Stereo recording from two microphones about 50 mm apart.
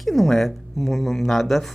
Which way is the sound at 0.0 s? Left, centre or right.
Centre.